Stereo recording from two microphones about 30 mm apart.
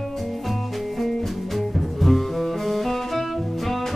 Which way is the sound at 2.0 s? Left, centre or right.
Centre.